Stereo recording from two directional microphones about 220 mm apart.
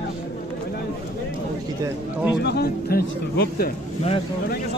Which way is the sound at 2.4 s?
45° left (ahead or behind).